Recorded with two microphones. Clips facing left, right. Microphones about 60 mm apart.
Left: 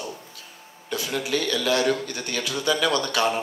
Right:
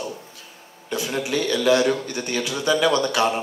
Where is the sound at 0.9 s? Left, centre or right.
Right.